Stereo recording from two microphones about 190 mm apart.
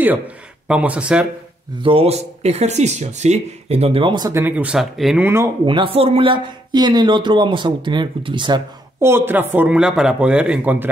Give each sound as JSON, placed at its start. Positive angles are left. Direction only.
{"t": 0.7, "sound": "speech", "side_deg": -5}
{"t": 1.8, "sound": "speech", "side_deg": -30}
{"t": 5.7, "sound": "speech", "side_deg": -30}
{"t": 9.0, "sound": "speech", "side_deg": -10}